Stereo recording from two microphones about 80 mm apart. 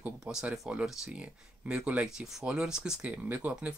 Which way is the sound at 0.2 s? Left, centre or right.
Centre.